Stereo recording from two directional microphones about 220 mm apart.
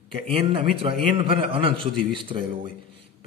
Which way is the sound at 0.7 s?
25° right (ahead or behind).